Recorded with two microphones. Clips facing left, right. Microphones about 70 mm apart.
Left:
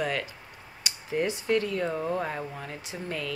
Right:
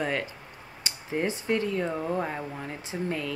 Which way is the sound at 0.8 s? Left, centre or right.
Right.